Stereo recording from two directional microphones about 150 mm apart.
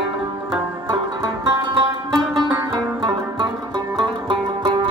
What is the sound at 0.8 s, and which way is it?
Music, 25° right (ahead or behind).